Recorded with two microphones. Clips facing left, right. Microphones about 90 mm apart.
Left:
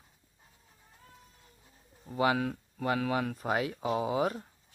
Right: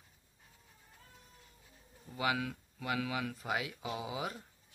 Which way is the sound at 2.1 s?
35° left (ahead or behind).